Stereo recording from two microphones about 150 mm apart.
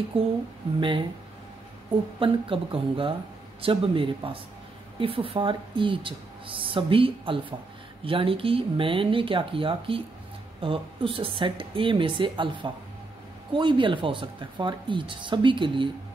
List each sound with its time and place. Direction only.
0.1 s speech: 35° right (ahead or behind)
2.1 s speech: 35° right (ahead or behind)